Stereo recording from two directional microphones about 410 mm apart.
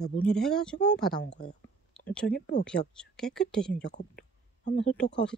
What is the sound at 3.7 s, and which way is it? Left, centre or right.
Speech, centre.